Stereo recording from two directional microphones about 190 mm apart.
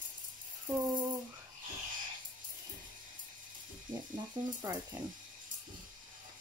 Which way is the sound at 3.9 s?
25° right (ahead or behind).